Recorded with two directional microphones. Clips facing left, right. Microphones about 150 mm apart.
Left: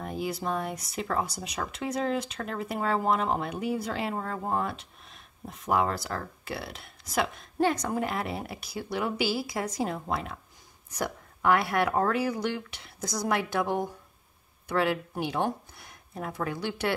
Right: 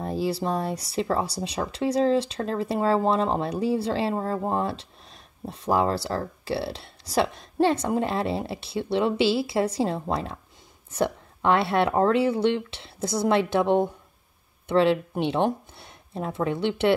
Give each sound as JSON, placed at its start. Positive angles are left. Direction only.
{"t": 0.0, "sound": "speech", "side_deg": -30}